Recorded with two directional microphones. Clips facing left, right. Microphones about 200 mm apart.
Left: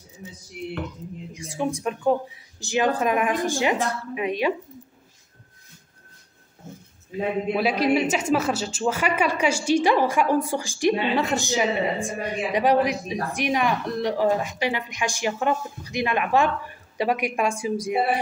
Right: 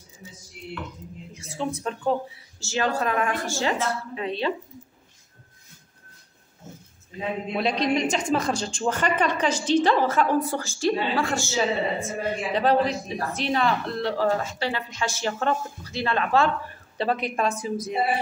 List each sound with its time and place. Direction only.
1.3 s speech: 15° left (ahead or behind)
7.1 s speech: 5° left (ahead or behind)